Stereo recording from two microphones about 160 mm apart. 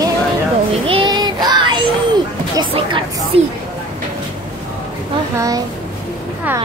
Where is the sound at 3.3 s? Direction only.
35° right (ahead or behind).